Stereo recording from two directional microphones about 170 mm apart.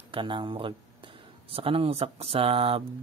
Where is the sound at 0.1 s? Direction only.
30° right (ahead or behind).